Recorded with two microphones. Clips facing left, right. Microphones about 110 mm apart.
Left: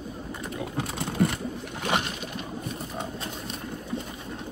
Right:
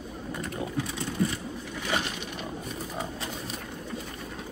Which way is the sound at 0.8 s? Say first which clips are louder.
Left 4 dB; 60° left (ahead or behind).